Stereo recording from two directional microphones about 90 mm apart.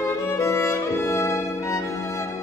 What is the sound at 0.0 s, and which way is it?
Music, 35° left (ahead or behind).